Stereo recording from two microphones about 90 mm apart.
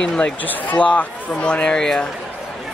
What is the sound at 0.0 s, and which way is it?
Speech, 15° left (ahead or behind).